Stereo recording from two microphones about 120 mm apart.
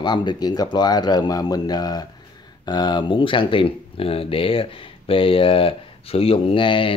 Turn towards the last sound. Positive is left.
turn(degrees=45)  # may be behind; listen again after turning